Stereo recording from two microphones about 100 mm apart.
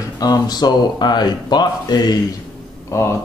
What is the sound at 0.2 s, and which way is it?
Speech, 40° left (ahead or behind).